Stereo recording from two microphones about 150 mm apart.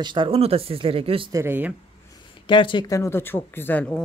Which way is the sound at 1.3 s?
15° right (ahead or behind).